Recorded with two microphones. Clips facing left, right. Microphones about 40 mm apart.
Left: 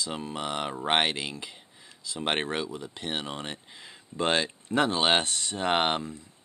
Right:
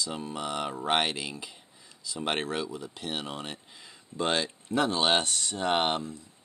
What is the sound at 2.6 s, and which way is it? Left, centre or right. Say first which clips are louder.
Speech: left 1 dB; centre.